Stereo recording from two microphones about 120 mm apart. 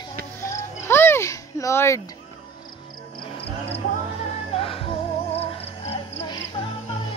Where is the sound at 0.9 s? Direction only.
20° left (ahead or behind).